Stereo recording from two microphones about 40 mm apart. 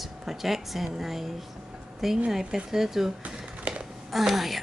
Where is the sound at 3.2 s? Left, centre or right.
Right.